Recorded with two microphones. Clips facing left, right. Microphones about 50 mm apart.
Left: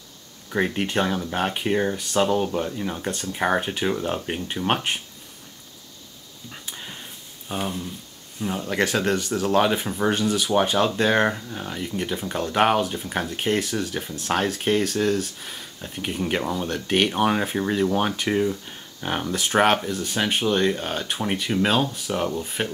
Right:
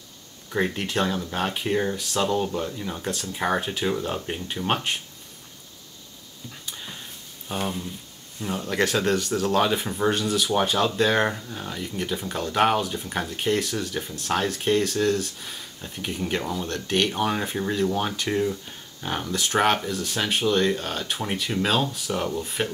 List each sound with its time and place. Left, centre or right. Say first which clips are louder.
0.5 s speech: left 2 dB; centre
6.6 s a sound: left 1 dB; centre
7.4 s speech: even; centre
16.0 s speech: left 2 dB; centre